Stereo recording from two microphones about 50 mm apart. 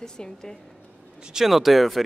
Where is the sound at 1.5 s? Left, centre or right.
Centre.